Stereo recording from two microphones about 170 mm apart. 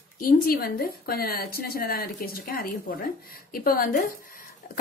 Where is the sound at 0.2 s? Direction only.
60° left (ahead or behind).